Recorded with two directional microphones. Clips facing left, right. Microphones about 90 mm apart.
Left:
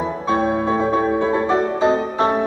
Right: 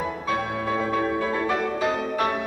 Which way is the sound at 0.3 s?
30° left (ahead or behind).